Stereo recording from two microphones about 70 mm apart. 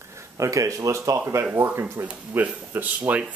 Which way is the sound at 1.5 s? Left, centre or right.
Right.